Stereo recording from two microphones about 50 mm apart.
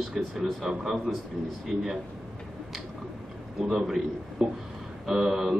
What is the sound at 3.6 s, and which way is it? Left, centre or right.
Speech, centre.